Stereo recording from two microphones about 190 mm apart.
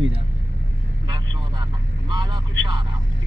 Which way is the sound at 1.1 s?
25° right (ahead or behind).